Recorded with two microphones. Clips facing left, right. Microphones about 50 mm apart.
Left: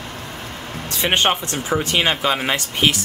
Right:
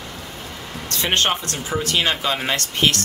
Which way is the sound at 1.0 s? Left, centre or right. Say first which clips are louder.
Left 2 dB; centre.